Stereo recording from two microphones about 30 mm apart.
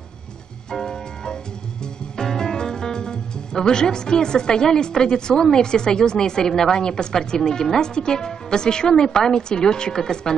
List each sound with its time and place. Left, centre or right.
0.8 s music: left
5.4 s a woman's voice: left